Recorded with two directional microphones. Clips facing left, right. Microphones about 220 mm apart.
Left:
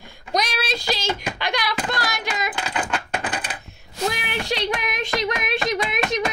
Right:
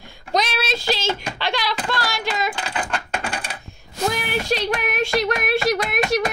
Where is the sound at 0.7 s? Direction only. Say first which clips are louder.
Right 3 dB; 15° left (ahead or behind).